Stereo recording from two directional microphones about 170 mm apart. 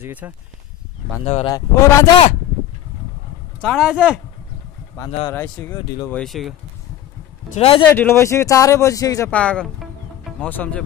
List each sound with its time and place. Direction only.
0.0 s speech: 10° right (ahead or behind)
1.2 s speech: 40° left (ahead or behind)
1.5 s speech: 20° left (ahead or behind)
3.6 s speech: centre (ahead or behind)
5.3 s speech: 10° left (ahead or behind)
7.5 s speech: 35° left (ahead or behind)
7.9 s speech: 15° left (ahead or behind)
9.3 s music: 5° left (ahead or behind)
10.5 s speech: 10° left (ahead or behind)